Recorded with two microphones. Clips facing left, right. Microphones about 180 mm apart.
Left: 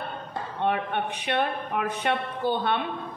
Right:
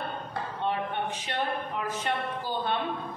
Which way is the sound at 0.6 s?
60° left (ahead or behind).